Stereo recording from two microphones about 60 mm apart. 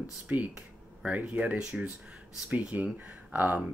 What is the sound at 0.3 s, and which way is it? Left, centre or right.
Speech, right.